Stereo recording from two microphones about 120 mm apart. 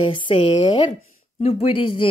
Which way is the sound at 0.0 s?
45° left (ahead or behind).